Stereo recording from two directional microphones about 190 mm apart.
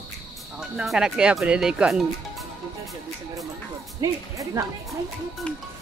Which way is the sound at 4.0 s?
15° right (ahead or behind).